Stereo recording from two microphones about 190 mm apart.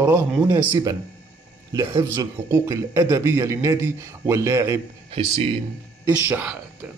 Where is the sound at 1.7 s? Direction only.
20° right (ahead or behind).